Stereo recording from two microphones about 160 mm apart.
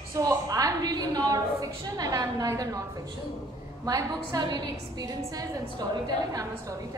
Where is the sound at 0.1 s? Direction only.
20° right (ahead or behind).